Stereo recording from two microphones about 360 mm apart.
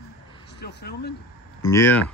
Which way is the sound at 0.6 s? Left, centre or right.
Left.